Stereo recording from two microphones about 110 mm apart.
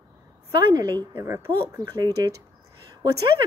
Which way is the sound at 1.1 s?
25° right (ahead or behind).